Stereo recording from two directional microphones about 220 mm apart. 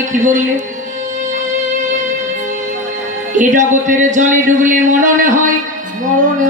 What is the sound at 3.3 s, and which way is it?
Speech, 35° right (ahead or behind).